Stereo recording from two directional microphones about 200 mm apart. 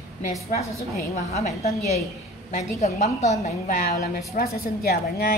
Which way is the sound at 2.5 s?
35° left (ahead or behind).